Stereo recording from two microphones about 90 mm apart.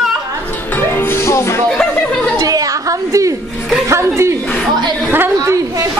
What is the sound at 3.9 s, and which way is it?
Speech, 30° right (ahead or behind).